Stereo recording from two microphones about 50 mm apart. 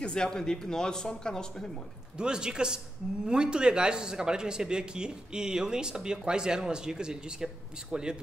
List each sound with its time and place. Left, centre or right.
0.0 s speech: centre
2.1 s speech: centre